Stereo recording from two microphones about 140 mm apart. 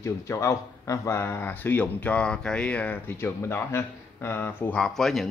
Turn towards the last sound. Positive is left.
turn(degrees=0)  # may be behind; listen again after turning